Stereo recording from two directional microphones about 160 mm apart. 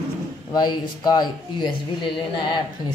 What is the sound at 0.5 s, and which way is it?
Speech, 25° left (ahead or behind).